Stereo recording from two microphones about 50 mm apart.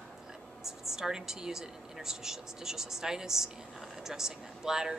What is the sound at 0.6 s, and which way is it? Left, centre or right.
A woman's voice, centre.